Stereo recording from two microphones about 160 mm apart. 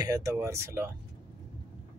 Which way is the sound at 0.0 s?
20° right (ahead or behind).